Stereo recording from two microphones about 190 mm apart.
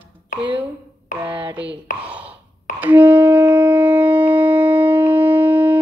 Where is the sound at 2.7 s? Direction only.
10° right (ahead or behind).